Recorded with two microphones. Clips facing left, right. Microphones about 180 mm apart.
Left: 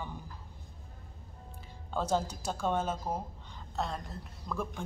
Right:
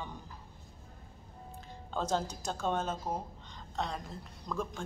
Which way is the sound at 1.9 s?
10° left (ahead or behind).